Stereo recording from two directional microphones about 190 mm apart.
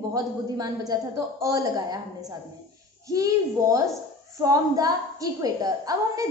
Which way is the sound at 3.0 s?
20° right (ahead or behind).